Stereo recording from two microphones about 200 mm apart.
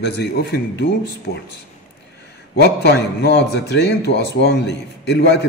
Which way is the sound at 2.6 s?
55° left (ahead or behind).